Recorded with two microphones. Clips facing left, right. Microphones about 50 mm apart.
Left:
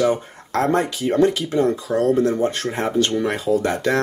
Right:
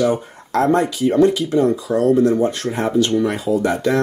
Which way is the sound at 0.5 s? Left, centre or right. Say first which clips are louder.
Right 3 dB; left.